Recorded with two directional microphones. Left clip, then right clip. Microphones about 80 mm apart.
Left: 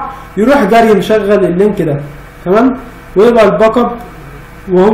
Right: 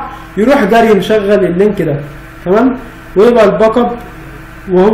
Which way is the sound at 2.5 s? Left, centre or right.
Centre.